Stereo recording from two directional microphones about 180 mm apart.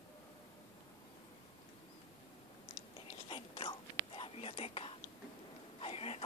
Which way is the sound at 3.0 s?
30° left (ahead or behind).